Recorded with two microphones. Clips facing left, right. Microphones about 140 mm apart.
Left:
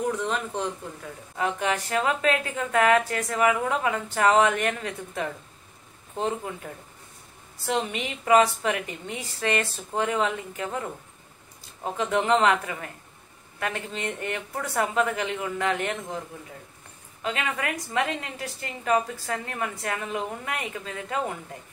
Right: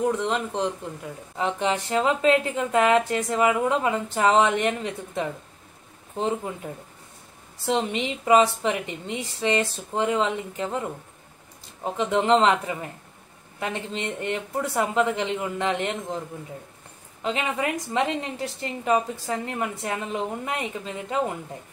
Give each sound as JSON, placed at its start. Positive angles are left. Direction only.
{"t": 0.0, "sound": "a woman's voice", "side_deg": -20}
{"t": 17.2, "sound": "a woman's voice", "side_deg": -25}